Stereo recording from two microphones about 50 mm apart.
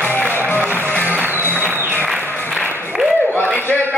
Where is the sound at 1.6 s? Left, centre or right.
Right.